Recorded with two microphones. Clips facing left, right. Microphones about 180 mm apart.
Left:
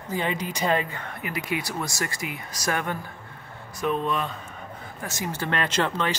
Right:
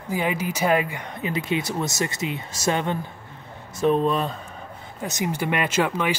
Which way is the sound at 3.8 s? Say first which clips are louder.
Right 6 dB; 35° right (ahead or behind).